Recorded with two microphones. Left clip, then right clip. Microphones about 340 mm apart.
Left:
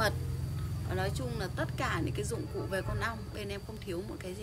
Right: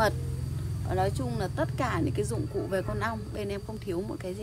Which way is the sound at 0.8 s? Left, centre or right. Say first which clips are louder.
Right 7 dB; centre.